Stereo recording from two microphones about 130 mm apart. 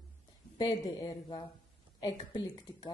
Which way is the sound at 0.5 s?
35° left (ahead or behind).